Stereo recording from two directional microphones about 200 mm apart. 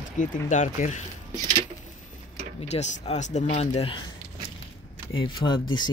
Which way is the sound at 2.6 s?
35° left (ahead or behind).